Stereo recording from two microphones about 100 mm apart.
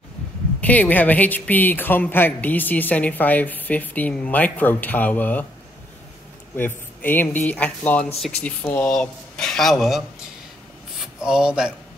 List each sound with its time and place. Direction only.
0.6 s speech: 15° left (ahead or behind)
6.5 s speech: 20° left (ahead or behind); by 10.0 s centre (ahead or behind)
11.1 s speech: 5° right (ahead or behind)